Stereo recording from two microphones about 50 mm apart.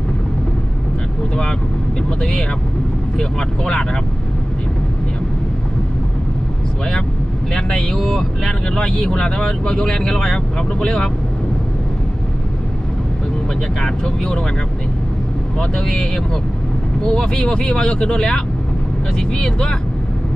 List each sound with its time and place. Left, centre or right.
3.2 s speech: centre
7.5 s speech: centre
8.7 s speech: centre
13.7 s speech: centre
15.7 s speech: centre